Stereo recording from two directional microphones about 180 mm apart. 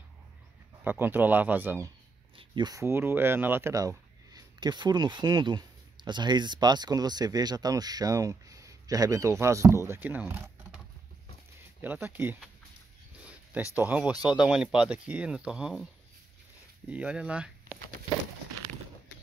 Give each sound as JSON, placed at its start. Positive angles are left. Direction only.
{"t": 0.8, "sound": "speech", "side_deg": -10}
{"t": 2.3, "sound": "speech", "side_deg": -25}
{"t": 11.8, "sound": "speech", "side_deg": -10}
{"t": 16.9, "sound": "speech", "side_deg": -5}